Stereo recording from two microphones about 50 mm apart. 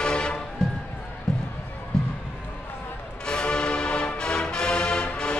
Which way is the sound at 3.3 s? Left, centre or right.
Centre.